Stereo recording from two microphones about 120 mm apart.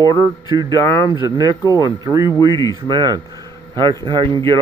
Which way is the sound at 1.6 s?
35° left (ahead or behind).